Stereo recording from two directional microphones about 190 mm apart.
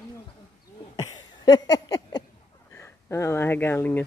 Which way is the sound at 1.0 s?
20° left (ahead or behind).